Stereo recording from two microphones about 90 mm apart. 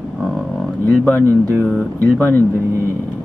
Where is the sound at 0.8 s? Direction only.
20° left (ahead or behind).